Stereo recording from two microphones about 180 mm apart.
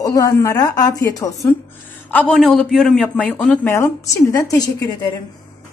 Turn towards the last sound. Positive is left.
turn(degrees=20)  # may be behind; listen again after turning